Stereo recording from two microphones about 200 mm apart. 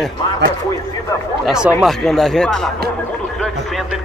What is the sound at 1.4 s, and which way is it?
Speech, 5° right (ahead or behind).